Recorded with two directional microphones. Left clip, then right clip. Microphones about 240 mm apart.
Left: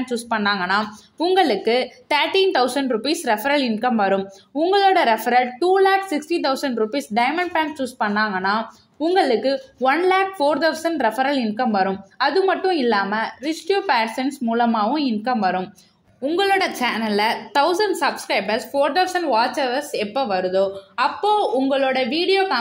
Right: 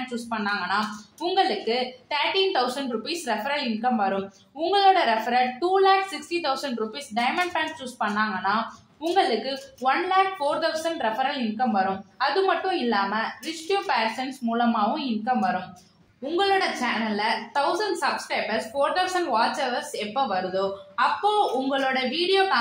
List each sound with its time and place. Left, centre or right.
0.0 s a woman's voice: left